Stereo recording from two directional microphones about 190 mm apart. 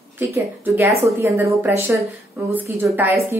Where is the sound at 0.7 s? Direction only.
10° right (ahead or behind).